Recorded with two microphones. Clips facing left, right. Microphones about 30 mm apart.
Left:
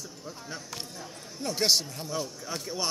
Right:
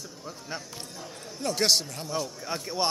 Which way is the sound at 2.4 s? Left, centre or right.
Right.